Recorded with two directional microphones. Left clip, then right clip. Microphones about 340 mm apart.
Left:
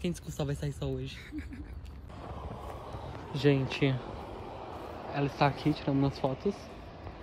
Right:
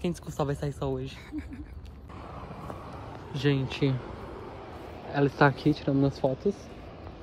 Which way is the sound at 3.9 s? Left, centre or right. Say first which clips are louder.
Right 1 dB; centre.